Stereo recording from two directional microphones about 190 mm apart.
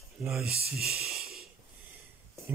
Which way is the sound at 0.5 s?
55° right (ahead or behind).